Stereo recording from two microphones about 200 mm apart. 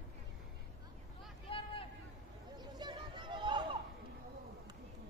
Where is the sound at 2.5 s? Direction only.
20° right (ahead or behind).